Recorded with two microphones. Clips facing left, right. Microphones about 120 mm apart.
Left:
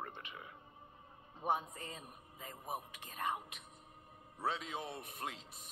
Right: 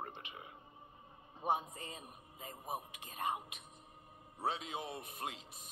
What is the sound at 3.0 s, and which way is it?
Music, 25° right (ahead or behind).